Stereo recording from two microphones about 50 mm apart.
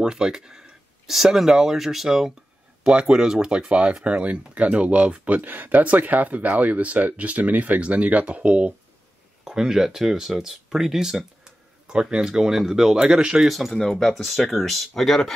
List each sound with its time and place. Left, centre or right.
0.0 s speech: centre
2.9 s speech: centre
5.4 s speech: right
9.4 s speech: centre
13.7 s speech: centre